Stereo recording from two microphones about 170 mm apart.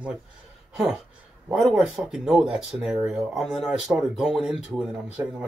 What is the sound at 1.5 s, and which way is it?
Speech, 5° right (ahead or behind).